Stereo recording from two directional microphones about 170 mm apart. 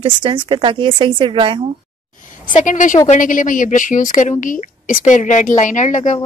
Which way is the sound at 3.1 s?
50° left (ahead or behind).